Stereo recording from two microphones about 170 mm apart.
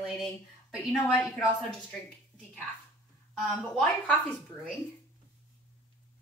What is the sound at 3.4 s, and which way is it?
Speech, centre (ahead or behind).